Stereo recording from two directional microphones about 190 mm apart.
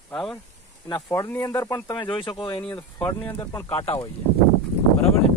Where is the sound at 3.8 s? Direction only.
30° left (ahead or behind).